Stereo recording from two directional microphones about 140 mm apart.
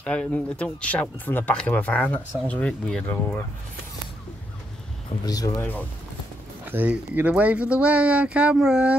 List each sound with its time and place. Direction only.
0.0 s speech: 10° left (ahead or behind)
5.2 s speech: 25° left (ahead or behind)
5.6 s speech: 15° left (ahead or behind)
6.6 s speech: 10° right (ahead or behind)